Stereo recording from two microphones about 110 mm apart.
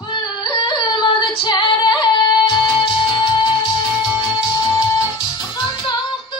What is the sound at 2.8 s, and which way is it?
Music, 40° left (ahead or behind).